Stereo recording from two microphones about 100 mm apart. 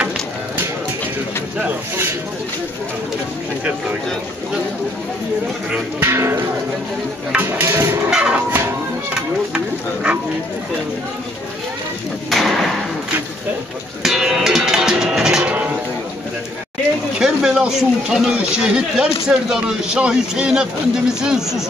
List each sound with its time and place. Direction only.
6.0 s speech: 25° right (ahead or behind)
8.1 s a man's voice: 10° right (ahead or behind)
12.3 s thump: centre (ahead or behind)
14.0 s music: 5° right (ahead or behind)
17.2 s a man's voice: 5° right (ahead or behind)